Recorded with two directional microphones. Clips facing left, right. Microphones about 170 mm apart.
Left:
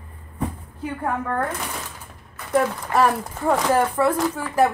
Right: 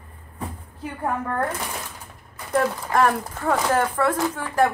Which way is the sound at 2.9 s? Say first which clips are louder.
Left 1 dB; 5° left (ahead or behind).